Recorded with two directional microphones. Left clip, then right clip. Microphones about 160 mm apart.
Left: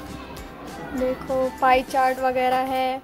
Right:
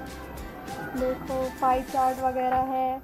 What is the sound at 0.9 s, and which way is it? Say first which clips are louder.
Music: left 5 dB; centre (ahead or behind).